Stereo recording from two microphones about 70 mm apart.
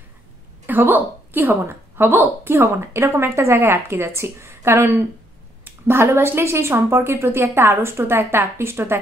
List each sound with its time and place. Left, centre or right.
0.7 s a woman's voice: right
2.6 s speech: right